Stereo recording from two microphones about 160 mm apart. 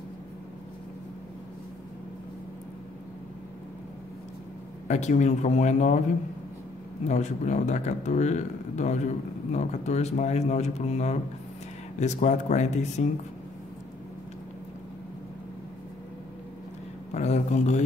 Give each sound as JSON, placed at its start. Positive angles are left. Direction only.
{"t": 4.8, "sound": "speech", "side_deg": 45}
{"t": 7.1, "sound": "speech", "side_deg": 45}
{"t": 17.1, "sound": "speech", "side_deg": 45}